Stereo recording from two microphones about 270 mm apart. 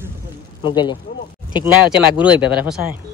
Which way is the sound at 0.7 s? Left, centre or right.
Centre.